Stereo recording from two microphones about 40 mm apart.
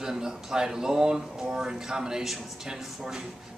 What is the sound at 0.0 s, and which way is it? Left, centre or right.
Speech, centre.